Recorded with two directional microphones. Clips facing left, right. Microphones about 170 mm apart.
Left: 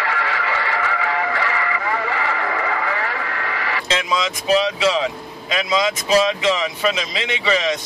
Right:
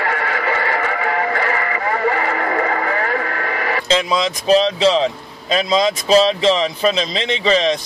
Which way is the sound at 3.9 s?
35° right (ahead or behind).